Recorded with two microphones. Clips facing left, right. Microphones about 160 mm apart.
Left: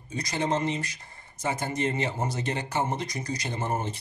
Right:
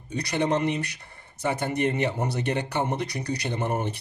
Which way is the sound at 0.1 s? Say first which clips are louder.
Right 3 dB; 65° right (ahead or behind).